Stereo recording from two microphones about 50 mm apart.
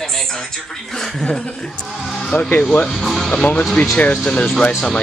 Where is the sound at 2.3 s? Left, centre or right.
Left.